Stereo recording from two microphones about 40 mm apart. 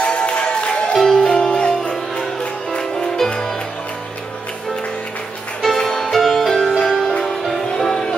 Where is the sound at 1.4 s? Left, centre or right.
Left.